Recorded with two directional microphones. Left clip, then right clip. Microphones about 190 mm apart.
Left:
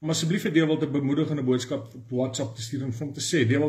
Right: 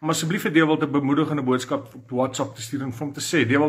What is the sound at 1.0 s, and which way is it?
Speech, 45° right (ahead or behind).